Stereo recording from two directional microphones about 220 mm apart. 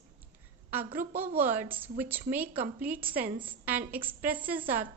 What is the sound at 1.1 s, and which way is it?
A woman's voice, 10° right (ahead or behind).